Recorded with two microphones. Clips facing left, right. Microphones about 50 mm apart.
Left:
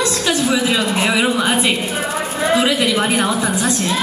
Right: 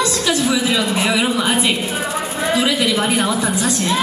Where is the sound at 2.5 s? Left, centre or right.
Centre.